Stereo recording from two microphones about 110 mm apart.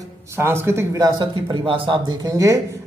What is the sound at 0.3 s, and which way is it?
Speech, 20° right (ahead or behind).